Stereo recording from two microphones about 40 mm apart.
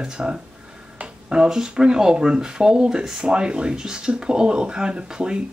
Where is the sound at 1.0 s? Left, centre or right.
Right.